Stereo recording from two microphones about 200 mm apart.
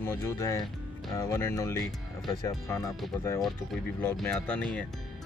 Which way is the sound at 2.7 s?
Centre (ahead or behind).